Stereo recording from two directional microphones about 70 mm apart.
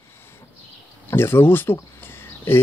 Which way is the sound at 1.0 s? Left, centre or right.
Left.